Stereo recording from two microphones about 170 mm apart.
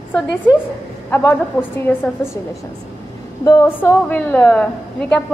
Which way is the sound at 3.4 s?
15° left (ahead or behind).